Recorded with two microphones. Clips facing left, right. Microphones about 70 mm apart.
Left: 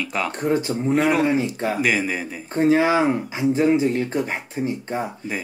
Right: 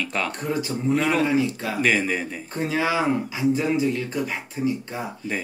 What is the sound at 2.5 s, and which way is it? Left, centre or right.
Speech, left.